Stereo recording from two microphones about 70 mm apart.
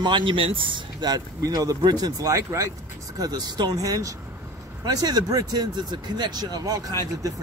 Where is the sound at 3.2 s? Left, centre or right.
Right.